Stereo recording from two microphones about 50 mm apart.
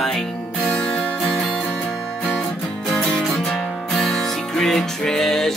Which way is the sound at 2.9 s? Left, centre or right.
Centre.